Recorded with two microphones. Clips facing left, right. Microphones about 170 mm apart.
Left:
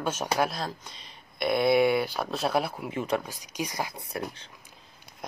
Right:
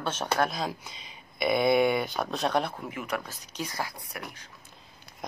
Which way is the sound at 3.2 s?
10° left (ahead or behind).